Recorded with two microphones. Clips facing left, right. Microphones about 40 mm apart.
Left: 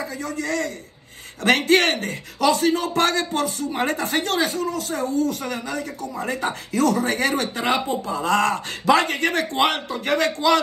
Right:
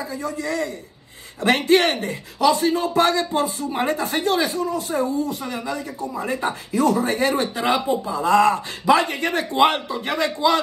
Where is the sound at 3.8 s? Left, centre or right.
Left.